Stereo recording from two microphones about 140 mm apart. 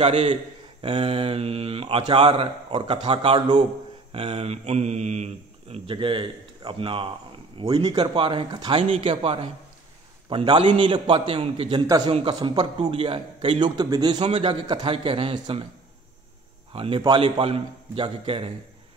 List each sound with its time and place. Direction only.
0.0 s speech: 45° right (ahead or behind)
4.1 s a man's voice: 45° right (ahead or behind)
14.2 s speech: 45° right (ahead or behind)
16.7 s speech: 40° right (ahead or behind)